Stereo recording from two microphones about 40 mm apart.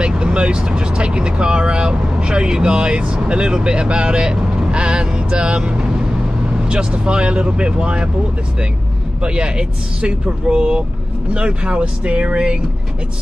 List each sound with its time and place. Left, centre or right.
0.0 s speech: right
9.2 s speech: right